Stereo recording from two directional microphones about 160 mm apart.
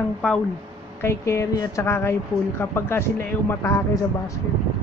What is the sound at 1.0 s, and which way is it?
Speech, 15° left (ahead or behind).